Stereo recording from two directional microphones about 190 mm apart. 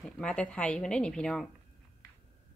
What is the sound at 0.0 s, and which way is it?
Speech, 5° left (ahead or behind).